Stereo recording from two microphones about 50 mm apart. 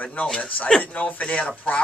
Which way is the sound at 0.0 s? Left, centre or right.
Left.